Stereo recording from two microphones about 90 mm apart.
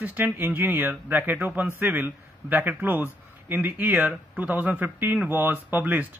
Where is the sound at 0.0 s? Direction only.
20° right (ahead or behind).